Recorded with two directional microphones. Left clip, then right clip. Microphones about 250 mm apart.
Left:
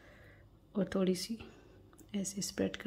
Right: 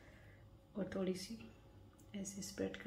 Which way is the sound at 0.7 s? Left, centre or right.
Left.